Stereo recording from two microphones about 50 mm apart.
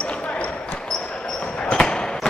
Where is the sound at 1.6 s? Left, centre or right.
Centre.